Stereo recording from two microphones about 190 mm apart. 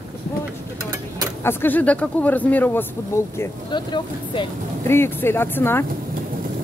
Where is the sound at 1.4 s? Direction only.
10° left (ahead or behind).